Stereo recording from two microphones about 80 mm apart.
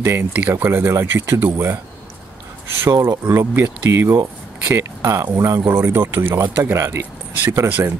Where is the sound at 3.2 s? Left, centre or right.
Right.